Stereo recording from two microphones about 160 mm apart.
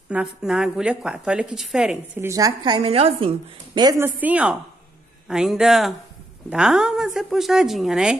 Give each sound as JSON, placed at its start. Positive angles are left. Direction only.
{"t": 0.1, "sound": "a woman's voice", "side_deg": -5}
{"t": 2.1, "sound": "a woman's voice", "side_deg": -20}
{"t": 4.0, "sound": "a woman's voice", "side_deg": -10}